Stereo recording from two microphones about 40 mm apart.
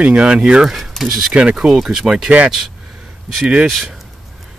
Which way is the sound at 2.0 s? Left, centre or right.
Centre.